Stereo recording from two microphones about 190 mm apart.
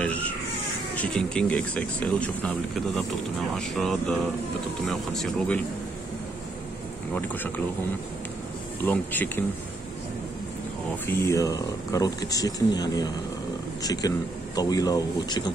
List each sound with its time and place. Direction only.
0.0 s baby cry: 5° left (ahead or behind)
0.9 s speech: 5° left (ahead or behind)
3.5 s speech: centre (ahead or behind)
8.8 s speech: 10° left (ahead or behind)
11.1 s speech: 15° left (ahead or behind)